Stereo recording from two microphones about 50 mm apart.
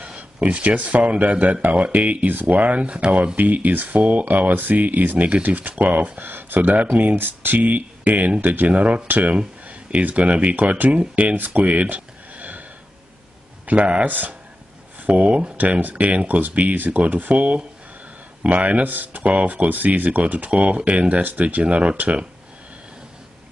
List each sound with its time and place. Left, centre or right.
0.0 s speech: right
7.2 s speech: right
9.4 s speech: right
13.7 s speech: right
14.0 s speech: right
21.2 s speech: right